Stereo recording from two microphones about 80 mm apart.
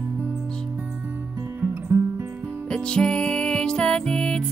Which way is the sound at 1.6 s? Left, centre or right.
Right.